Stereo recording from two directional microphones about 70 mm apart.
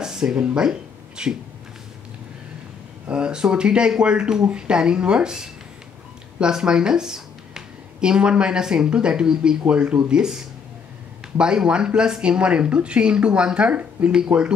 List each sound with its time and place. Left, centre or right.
0.0 s speech: centre
3.1 s speech: centre